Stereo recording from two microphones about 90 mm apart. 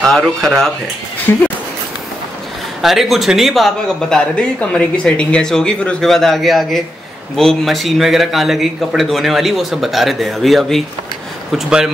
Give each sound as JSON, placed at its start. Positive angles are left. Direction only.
{"t": 0.0, "sound": "speech", "side_deg": 5}
{"t": 1.3, "sound": "speech", "side_deg": 25}
{"t": 2.8, "sound": "speech", "side_deg": 0}